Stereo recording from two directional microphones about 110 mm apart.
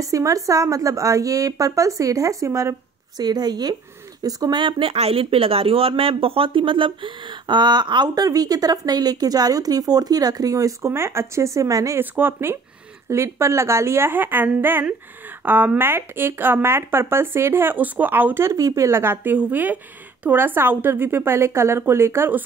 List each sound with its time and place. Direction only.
0.0 s speech: 30° right (ahead or behind)
3.2 s speech: 40° right (ahead or behind)
12.0 s speech: 20° right (ahead or behind)